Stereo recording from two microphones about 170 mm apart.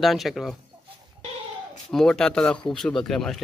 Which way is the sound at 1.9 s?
Centre (ahead or behind).